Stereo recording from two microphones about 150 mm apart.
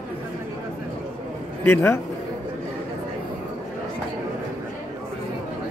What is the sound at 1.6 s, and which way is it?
Speech, 15° left (ahead or behind).